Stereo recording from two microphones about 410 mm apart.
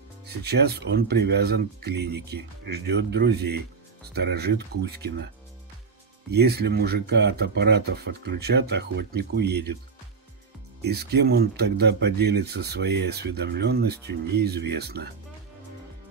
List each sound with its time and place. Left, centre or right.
0.4 s speech: right
6.3 s speech: right
10.8 s speech: right